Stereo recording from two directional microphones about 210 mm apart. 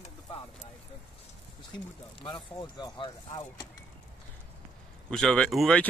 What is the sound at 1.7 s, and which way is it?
Speech, 20° left (ahead or behind).